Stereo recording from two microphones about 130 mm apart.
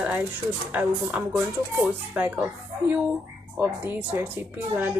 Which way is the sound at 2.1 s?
10° right (ahead or behind).